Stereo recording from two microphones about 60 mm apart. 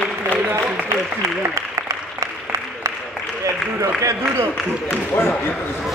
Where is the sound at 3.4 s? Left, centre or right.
Right.